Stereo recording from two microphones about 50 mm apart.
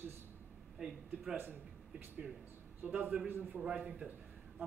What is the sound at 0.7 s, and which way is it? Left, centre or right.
Speech, centre.